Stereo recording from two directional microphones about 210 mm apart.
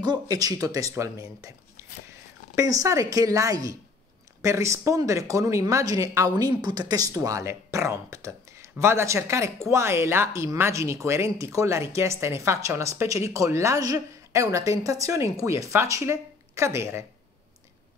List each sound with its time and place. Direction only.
0.0 s speech: 20° right (ahead or behind)
1.8 s biting: 15° right (ahead or behind)
2.5 s a woman's voice: 15° right (ahead or behind)